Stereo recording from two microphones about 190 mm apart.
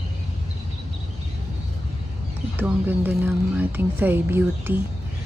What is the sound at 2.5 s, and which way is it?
Speech, 10° right (ahead or behind).